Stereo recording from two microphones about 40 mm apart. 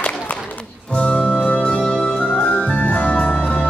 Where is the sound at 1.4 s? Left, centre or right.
Left.